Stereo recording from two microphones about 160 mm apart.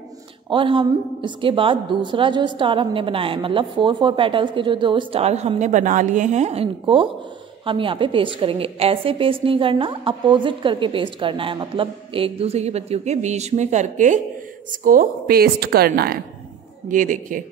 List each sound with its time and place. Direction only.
0.5 s a woman's voice: 30° right (ahead or behind); by 16.2 s 75° right (ahead or behind)
16.9 s a man's voice: 55° right (ahead or behind)